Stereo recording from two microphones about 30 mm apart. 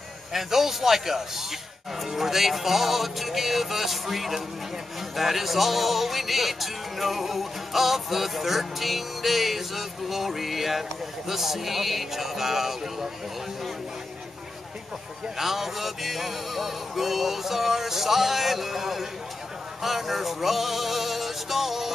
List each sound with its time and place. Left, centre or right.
0.3 s a man's voice: centre
15.3 s a man's voice: centre
19.8 s music: centre